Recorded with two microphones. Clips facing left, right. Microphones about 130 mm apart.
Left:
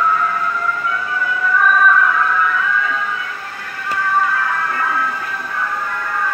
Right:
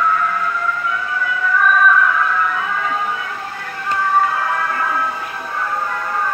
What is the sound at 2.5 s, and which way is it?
Music, 40° right (ahead or behind).